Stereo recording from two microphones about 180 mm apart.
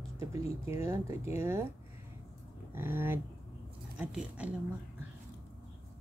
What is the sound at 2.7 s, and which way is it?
A woman's voice, 15° right (ahead or behind).